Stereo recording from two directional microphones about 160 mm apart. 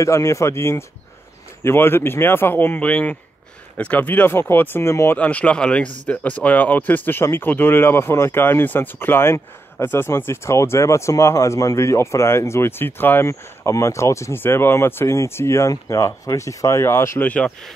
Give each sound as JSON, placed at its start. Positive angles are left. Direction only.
{"t": 0.0, "sound": "speech", "side_deg": 20}